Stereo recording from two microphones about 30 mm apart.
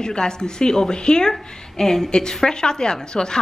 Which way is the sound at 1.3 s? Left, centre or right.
Centre.